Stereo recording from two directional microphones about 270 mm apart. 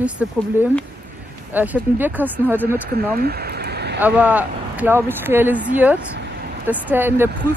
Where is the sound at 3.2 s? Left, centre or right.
Right.